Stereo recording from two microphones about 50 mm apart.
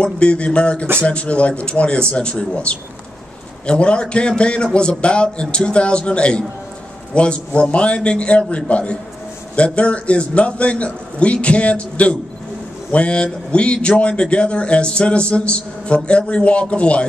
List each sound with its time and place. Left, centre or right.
0.0 s a man's voice: left